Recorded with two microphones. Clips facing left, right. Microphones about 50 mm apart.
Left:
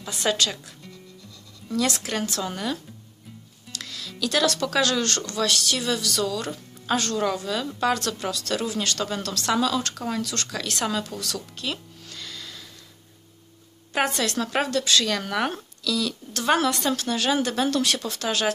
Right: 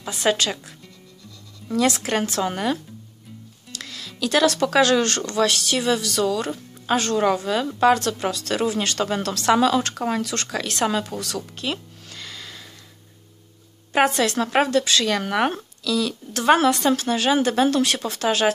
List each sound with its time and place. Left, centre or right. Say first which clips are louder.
0.2 s speech: right 3 dB; right
2.0 s a woman's voice: right 5 dB; right
3.7 s music: right 1 dB; centre
4.6 s a woman's voice: right 6 dB; right
10.9 s music: right 3 dB; right
13.9 s speech: right 5 dB; centre
14.4 s a woman's voice: right 5 dB; right